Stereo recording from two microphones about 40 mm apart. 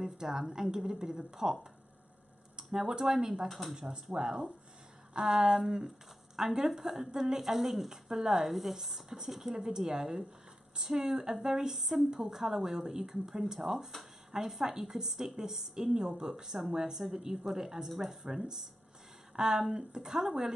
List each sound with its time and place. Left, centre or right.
0.0 s a woman's voice: centre
3.4 s speech: centre
3.7 s a woman's voice: right
19.3 s a woman's voice: centre